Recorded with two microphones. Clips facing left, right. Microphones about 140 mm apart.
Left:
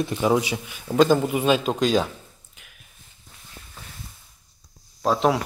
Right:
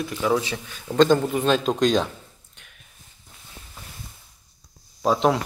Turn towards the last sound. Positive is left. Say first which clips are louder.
# right 1 dB
turn(degrees=0)  # may be behind; listen again after turning